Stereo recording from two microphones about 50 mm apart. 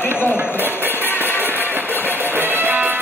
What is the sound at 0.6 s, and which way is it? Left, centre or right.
Music, right.